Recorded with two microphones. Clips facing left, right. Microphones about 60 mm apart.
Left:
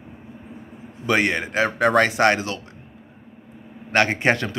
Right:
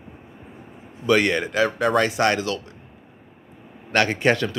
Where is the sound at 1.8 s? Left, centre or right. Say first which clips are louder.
Left 5 dB; left.